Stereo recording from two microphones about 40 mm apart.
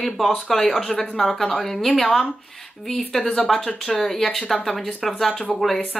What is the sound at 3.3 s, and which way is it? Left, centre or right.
Speech, centre.